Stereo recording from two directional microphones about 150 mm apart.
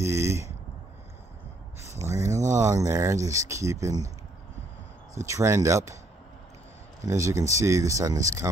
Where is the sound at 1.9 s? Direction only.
20° right (ahead or behind).